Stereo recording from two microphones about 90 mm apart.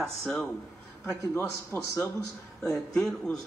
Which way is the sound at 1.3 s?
20° left (ahead or behind).